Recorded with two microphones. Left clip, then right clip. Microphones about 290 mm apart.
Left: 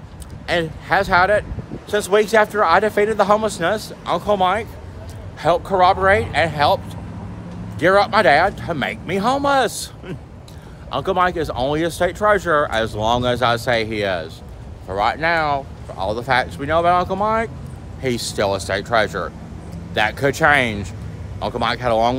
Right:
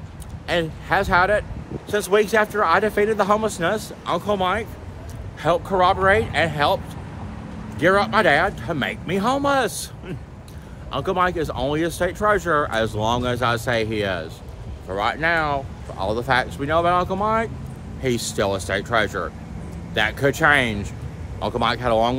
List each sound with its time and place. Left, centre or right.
0.5 s speech: centre